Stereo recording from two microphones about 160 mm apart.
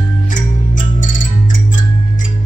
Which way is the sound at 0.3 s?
55° left (ahead or behind).